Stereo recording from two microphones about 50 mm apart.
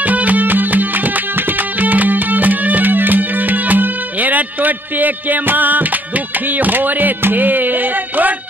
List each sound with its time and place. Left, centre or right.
0.0 s music: right